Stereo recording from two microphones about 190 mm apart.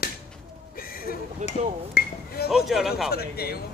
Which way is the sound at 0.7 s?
50° left (ahead or behind).